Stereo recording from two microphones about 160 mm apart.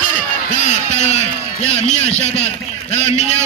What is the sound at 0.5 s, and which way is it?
A man's voice, 50° left (ahead or behind).